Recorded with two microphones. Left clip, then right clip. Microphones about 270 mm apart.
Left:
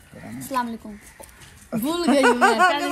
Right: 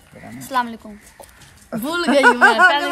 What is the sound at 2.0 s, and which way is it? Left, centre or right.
Speech, right.